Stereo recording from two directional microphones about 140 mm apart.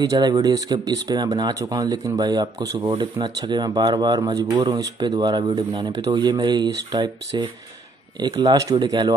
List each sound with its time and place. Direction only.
0.0 s speech: 25° right (ahead or behind)